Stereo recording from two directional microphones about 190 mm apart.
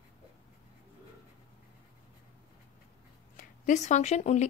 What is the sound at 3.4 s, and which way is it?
Speech, 40° left (ahead or behind).